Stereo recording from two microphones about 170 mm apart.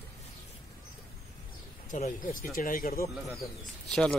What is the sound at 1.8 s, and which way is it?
Speech, 45° left (ahead or behind).